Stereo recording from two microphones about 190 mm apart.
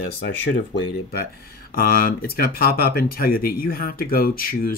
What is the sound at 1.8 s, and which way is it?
Speech, 50° left (ahead or behind).